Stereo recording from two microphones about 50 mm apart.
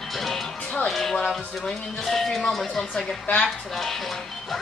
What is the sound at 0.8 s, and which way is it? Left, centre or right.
Speech, centre.